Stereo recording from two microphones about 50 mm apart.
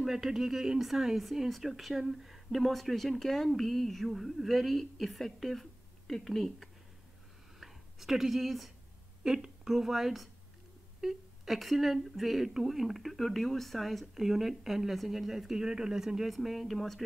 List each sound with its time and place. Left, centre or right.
0.0 s speech: centre
9.2 s a woman's voice: centre
9.7 s speech: centre